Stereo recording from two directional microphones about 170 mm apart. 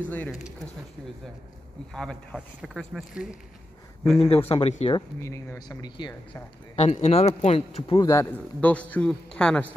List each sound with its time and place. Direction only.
0.1 s a man's voice: 10° left (ahead or behind)
2.0 s a man's voice: 5° left (ahead or behind)
4.5 s speech: 35° left (ahead or behind)
4.9 s speech: 15° left (ahead or behind)
6.7 s speech: 35° left (ahead or behind)
8.0 s speech: 20° left (ahead or behind)
8.5 s a man's voice: 10° left (ahead or behind)